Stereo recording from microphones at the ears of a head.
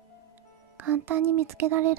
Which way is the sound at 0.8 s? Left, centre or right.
Right.